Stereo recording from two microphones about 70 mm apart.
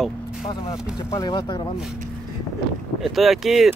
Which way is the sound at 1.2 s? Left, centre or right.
Left.